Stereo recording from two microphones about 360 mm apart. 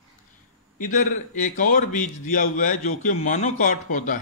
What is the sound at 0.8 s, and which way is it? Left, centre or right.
A man's voice, left.